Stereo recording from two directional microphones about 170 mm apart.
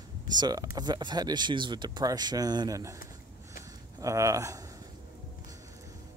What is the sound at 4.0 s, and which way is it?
Speech, 20° right (ahead or behind).